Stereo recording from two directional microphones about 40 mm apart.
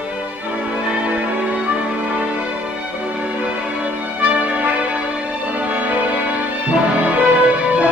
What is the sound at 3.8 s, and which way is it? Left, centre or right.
Music, right.